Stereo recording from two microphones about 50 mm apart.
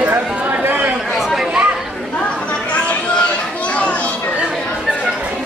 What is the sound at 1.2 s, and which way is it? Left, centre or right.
Chatter, centre.